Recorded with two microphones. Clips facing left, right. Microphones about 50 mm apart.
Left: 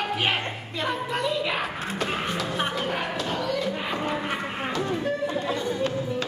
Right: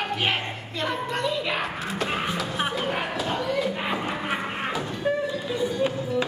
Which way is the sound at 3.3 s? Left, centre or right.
Centre.